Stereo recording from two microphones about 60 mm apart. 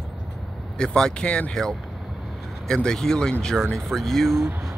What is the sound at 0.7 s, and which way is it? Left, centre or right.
Speech, centre.